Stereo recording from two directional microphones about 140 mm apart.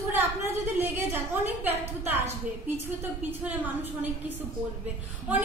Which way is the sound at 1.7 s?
15° right (ahead or behind).